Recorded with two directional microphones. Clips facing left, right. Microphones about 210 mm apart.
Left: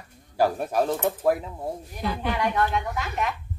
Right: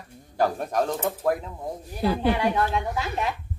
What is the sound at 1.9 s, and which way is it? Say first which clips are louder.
A woman's voice: right 6 dB; 30° right (ahead or behind).